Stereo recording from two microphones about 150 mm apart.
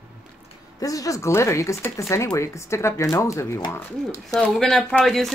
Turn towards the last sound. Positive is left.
turn(degrees=0)  # may be behind; listen again after turning